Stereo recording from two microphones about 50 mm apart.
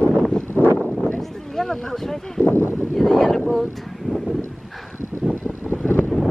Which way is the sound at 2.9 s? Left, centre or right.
Centre.